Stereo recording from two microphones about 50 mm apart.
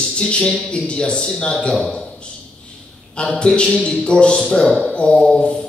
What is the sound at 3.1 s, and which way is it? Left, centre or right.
A man's voice, left.